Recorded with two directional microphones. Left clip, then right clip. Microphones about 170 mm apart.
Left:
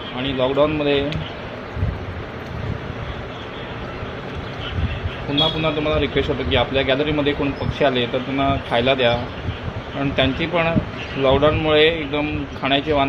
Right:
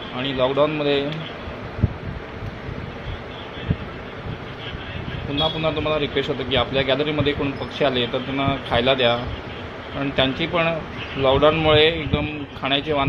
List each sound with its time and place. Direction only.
0.2 s speech: 5° right (ahead or behind)
5.3 s a man's voice: 5° right (ahead or behind)